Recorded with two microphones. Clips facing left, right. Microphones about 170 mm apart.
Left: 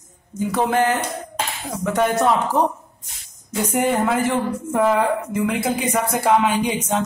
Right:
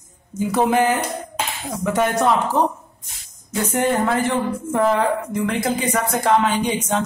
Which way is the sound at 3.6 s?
10° left (ahead or behind).